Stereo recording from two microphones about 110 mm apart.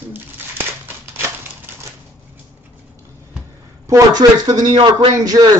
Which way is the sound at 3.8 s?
30° right (ahead or behind).